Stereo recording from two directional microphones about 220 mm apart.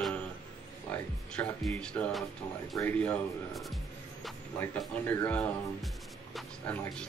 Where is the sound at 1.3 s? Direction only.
5° left (ahead or behind).